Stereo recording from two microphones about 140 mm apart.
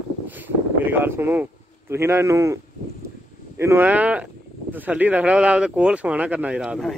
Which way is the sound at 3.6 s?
15° right (ahead or behind).